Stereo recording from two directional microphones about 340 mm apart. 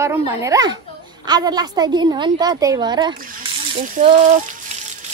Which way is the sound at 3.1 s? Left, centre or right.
Right.